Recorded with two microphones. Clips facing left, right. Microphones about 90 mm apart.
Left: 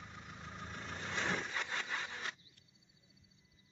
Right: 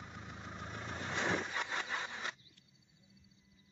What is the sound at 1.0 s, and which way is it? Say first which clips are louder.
Vehicle: right 2 dB; 15° right (ahead or behind).